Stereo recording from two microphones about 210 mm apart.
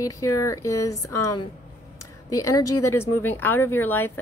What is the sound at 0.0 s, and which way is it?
A woman's voice, 15° left (ahead or behind).